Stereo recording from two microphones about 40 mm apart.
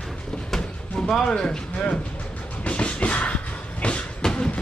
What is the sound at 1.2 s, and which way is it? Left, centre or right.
Vehicle, centre.